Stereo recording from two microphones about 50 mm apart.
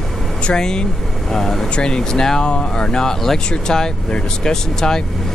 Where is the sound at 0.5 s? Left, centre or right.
Centre.